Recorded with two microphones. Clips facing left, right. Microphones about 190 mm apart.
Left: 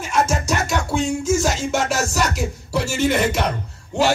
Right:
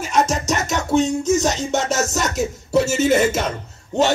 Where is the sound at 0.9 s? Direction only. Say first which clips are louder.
Right 6 dB; 40° right (ahead or behind).